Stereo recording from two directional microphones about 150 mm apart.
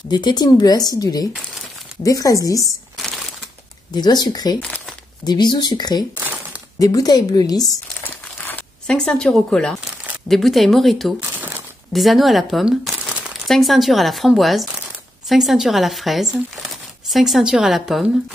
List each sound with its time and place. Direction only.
0.1 s a woman's voice: 30° left (ahead or behind)
2.7 s a sound: centre (ahead or behind)
3.9 s a woman's voice: 30° left (ahead or behind)
4.6 s crumpling: 5° left (ahead or behind)
5.2 s a woman's voice: 30° left (ahead or behind)
6.1 s a sound: 10° right (ahead or behind)
6.8 s a woman's voice: 25° left (ahead or behind)
8.1 s a sound: 15° left (ahead or behind)
10.2 s a woman's voice: centre (ahead or behind)
11.1 s crumpling: 15° right (ahead or behind)
11.9 s a woman's voice: centre (ahead or behind)